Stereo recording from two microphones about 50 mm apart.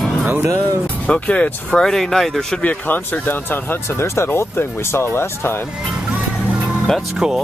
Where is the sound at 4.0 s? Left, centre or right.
Left.